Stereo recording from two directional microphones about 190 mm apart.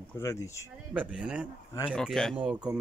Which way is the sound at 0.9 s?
5° right (ahead or behind).